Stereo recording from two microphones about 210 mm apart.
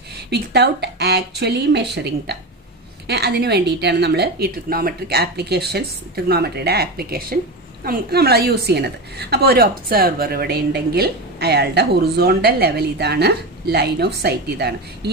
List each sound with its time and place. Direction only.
0.3 s a woman's voice: 50° right (ahead or behind)